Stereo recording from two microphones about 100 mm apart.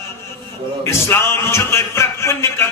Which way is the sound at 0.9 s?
25° left (ahead or behind).